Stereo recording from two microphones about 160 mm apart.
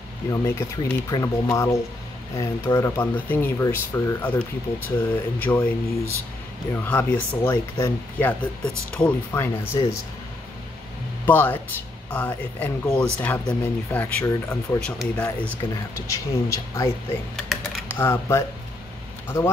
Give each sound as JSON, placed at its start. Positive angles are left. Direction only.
{"t": 0.3, "sound": "speech", "side_deg": 15}
{"t": 11.2, "sound": "speech", "side_deg": 10}
{"t": 16.1, "sound": "speech", "side_deg": 20}
{"t": 17.4, "sound": "typing", "side_deg": 0}
{"t": 17.9, "sound": "speech", "side_deg": 15}